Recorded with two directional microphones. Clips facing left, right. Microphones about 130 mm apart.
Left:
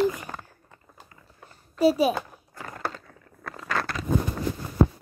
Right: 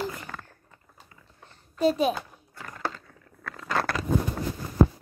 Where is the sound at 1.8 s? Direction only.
5° left (ahead or behind).